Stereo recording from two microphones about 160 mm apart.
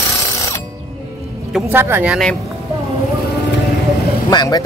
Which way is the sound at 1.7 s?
15° right (ahead or behind).